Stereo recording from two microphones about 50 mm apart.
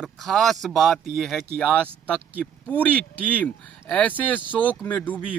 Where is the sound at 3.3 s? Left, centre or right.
Left.